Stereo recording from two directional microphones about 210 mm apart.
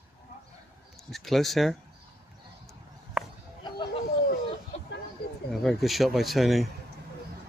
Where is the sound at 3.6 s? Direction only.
20° left (ahead or behind).